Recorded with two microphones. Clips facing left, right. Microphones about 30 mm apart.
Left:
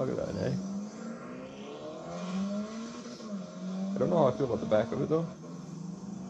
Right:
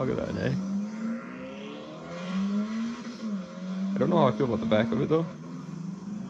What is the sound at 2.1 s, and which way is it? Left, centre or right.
Vehicle, right.